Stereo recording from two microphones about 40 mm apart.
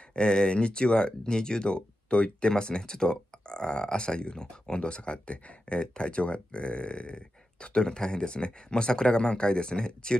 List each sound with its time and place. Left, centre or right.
0.1 s speech: left